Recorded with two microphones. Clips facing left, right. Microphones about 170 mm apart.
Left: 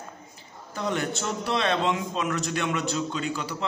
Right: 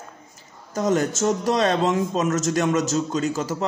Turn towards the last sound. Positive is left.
turn(degrees=-45)  # may be behind; listen again after turning